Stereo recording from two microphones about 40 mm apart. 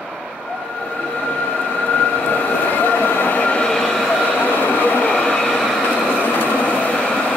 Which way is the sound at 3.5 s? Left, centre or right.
Left.